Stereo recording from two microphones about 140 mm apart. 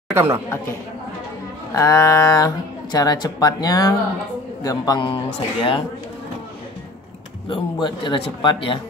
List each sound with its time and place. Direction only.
0.1 s speech: 15° right (ahead or behind)
1.7 s speech: 25° left (ahead or behind); by 5.9 s 40° left (ahead or behind)
7.4 s speech: 35° left (ahead or behind)